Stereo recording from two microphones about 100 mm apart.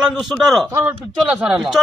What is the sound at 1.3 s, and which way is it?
Speech, 10° right (ahead or behind).